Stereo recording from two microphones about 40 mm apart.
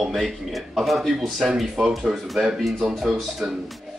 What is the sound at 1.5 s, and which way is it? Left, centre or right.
Speech, centre.